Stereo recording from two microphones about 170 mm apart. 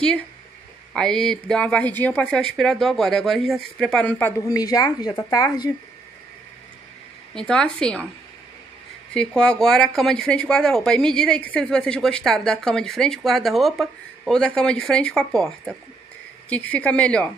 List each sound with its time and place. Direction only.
0.9 s speech: 5° left (ahead or behind)
4.5 s speech: 20° left (ahead or behind)
7.3 s speech: 5° left (ahead or behind)
9.1 s speech: 5° left (ahead or behind)